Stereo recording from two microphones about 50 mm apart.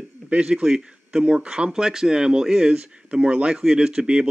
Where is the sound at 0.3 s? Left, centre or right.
Centre.